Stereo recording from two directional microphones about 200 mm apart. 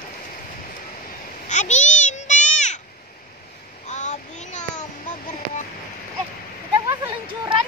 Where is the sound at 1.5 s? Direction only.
35° left (ahead or behind).